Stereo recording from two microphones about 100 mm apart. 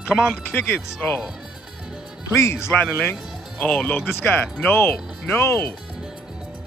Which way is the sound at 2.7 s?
20° left (ahead or behind).